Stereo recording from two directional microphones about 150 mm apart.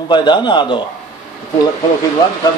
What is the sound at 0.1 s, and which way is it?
Speech, 30° left (ahead or behind).